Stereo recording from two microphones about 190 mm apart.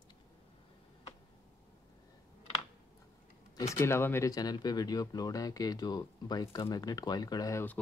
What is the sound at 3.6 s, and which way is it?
Speech, 15° left (ahead or behind).